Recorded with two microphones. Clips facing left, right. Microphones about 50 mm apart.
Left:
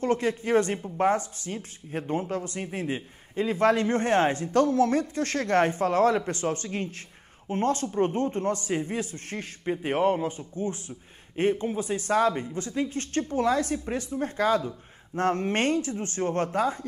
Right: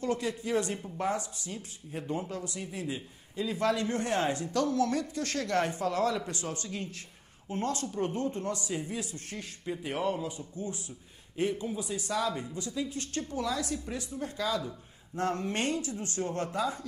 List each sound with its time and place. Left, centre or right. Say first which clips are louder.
0.0 s speech: left 6 dB; left